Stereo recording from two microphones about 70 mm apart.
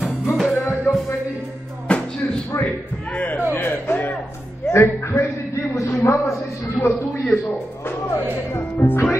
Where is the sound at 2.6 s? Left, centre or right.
Left.